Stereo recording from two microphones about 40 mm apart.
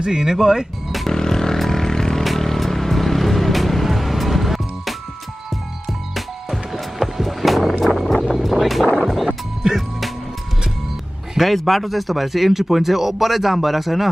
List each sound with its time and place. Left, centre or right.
0.0 s speech: centre
1.0 s vehicle: centre
6.1 s music: centre
9.6 s music: centre
11.3 s speech: centre